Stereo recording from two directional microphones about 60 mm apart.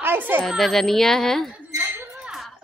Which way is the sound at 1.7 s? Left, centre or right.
Right.